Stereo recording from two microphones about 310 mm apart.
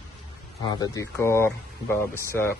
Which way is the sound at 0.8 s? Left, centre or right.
Centre.